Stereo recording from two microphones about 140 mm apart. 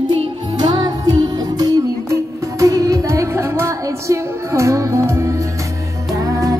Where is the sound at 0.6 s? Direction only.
30° right (ahead or behind).